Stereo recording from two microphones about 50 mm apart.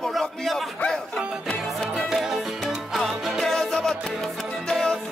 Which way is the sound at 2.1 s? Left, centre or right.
Centre.